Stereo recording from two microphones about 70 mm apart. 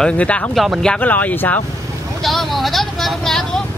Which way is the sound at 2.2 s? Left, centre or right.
Centre.